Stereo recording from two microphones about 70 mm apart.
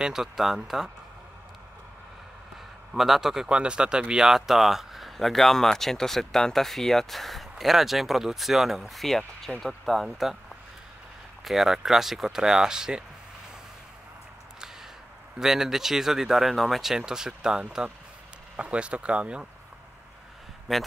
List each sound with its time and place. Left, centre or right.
0.0 s speech: centre
2.9 s speech: centre
11.4 s speech: centre
15.3 s speech: centre
20.7 s speech: centre